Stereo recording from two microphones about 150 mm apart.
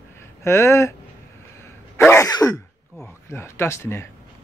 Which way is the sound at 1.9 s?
15° left (ahead or behind).